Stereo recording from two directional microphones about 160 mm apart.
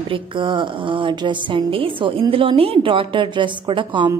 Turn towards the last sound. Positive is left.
turn(degrees=-30)  # may be behind; listen again after turning